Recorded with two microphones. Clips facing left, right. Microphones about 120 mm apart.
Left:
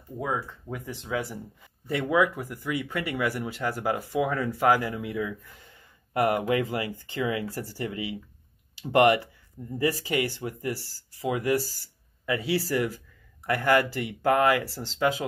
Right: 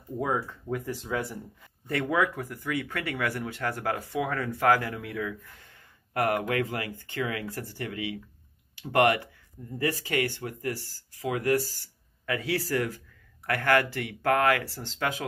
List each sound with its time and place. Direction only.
0.2 s speech: centre (ahead or behind); by 7.4 s 25° left (ahead or behind)
7.4 s speech: 35° left (ahead or behind); by 15.2 s 15° left (ahead or behind)